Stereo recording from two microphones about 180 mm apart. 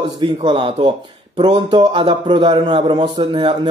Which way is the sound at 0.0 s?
25° right (ahead or behind).